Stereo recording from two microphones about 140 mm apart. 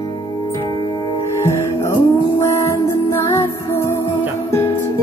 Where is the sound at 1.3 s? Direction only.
20° left (ahead or behind).